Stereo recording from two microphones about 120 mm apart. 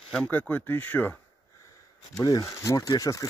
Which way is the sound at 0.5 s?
15° left (ahead or behind).